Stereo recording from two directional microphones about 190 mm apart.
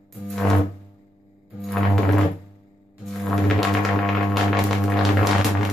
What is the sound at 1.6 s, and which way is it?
Music, centre (ahead or behind).